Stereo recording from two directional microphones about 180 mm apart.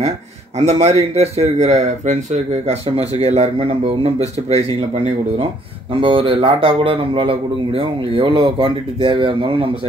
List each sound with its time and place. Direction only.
0.6 s a man's voice: 35° right (ahead or behind)